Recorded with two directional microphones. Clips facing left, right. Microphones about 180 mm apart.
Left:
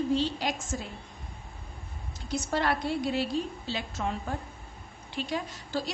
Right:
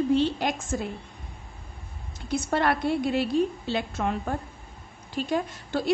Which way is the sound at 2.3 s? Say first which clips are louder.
Right 4 dB; 60° right (ahead or behind).